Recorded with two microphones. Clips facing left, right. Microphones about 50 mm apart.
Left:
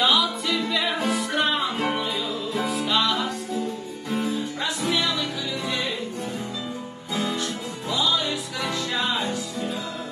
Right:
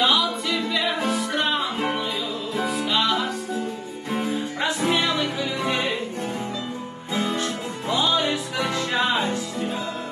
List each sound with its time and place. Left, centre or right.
0.0 s music: centre
4.1 s music: right
7.2 s music: right